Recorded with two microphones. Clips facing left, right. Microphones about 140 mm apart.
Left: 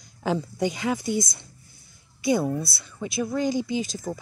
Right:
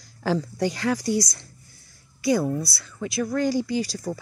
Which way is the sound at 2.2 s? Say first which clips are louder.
Right 1 dB; 25° left (ahead or behind).